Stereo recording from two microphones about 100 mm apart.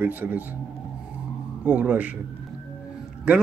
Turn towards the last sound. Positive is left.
turn(degrees=-10)  # may be behind; listen again after turning